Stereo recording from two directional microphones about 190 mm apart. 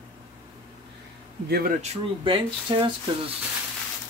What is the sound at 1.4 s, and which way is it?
Speech, 55° right (ahead or behind).